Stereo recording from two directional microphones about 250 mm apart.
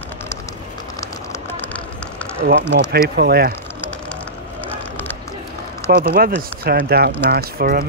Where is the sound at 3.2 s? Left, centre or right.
Right.